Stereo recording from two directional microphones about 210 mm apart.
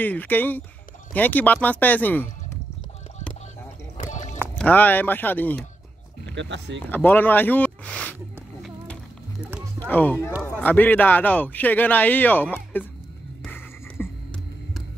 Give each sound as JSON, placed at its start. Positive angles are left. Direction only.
{"t": 0.0, "sound": "a man's voice", "side_deg": 10}
{"t": 4.0, "sound": "a sound", "side_deg": 35}
{"t": 4.6, "sound": "a man's voice", "side_deg": 5}
{"t": 6.3, "sound": "speech", "side_deg": -60}
{"t": 6.9, "sound": "a man's voice", "side_deg": 10}
{"t": 9.8, "sound": "a man's voice", "side_deg": 10}
{"t": 13.4, "sound": "music", "side_deg": 10}